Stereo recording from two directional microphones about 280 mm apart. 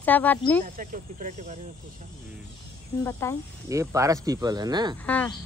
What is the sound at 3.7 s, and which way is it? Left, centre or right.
Speech, centre.